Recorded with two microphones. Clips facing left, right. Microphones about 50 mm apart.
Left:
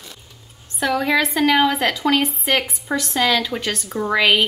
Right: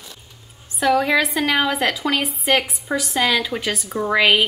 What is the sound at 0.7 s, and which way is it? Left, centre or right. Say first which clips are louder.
A woman's voice: right 2 dB; centre.